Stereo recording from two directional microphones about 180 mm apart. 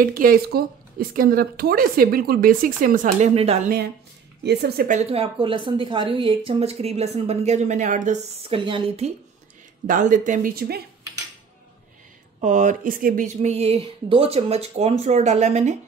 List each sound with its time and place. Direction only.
0.0 s a woman's voice: 50° right (ahead or behind); by 3.6 s 35° right (ahead or behind)
3.6 s a woman's voice: 60° right (ahead or behind)
4.9 s a woman's voice: 30° right (ahead or behind)
9.8 s a woman's voice: 45° right (ahead or behind)
12.4 s a woman's voice: 45° right (ahead or behind)